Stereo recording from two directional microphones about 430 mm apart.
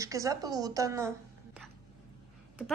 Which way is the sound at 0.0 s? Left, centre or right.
Centre.